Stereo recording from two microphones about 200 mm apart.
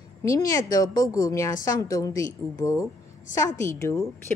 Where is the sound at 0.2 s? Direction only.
15° left (ahead or behind).